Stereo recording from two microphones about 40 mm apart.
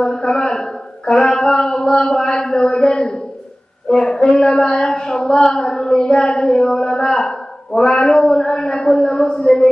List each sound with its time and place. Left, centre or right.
0.0 s a man's voice: centre
0.6 s a sound: centre
1.2 s a man's voice: centre
4.6 s a sound: left
5.0 s a man's voice: centre
6.9 s a man's voice: centre
8.0 s a man's voice: centre
8.5 s a man's voice: centre
9.5 s a sound: left